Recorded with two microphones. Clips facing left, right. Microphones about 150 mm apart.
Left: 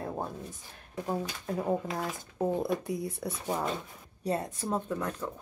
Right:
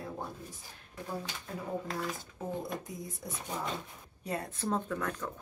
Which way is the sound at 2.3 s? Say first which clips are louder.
Left 12 dB; 70° left (ahead or behind).